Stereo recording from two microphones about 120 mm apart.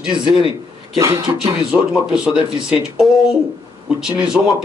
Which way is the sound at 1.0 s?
25° right (ahead or behind).